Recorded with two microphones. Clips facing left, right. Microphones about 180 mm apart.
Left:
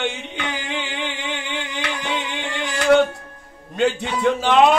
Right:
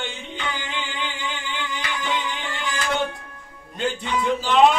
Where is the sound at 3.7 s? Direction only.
70° left (ahead or behind).